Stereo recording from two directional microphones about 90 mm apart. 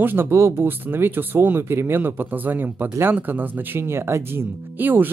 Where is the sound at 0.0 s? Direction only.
25° right (ahead or behind).